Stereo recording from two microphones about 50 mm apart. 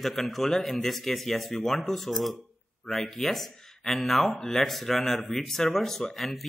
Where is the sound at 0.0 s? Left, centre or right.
Centre.